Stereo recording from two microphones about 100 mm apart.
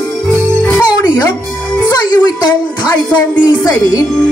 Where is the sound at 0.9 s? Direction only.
45° left (ahead or behind).